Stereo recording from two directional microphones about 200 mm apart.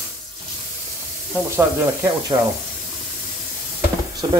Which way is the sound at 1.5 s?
15° right (ahead or behind).